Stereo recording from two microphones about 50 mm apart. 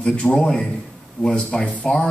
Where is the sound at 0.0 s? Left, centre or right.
Centre.